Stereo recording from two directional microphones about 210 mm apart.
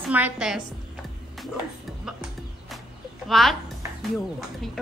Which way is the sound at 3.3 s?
Centre (ahead or behind).